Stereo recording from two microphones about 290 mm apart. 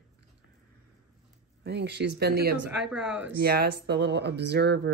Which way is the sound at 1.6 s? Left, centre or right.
Right.